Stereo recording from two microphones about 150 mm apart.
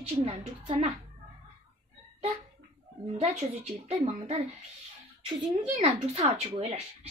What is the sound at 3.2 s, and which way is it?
A woman's voice, 50° right (ahead or behind).